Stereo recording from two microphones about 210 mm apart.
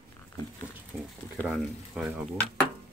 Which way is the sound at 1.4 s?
Centre (ahead or behind).